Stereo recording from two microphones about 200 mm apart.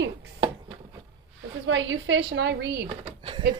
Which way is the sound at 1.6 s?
65° right (ahead or behind).